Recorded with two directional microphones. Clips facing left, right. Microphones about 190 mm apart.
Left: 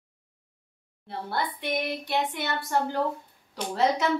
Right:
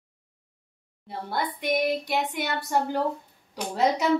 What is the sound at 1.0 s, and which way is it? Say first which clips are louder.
A woman's voice: right 1 dB; 15° right (ahead or behind).